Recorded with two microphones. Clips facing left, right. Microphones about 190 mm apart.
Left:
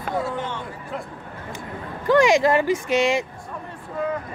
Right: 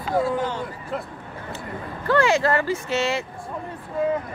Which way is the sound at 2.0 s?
15° left (ahead or behind).